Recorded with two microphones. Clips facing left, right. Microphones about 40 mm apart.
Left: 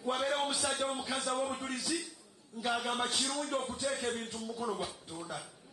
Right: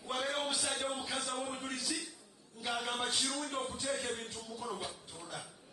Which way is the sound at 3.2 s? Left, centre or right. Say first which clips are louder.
Left 3 dB; centre.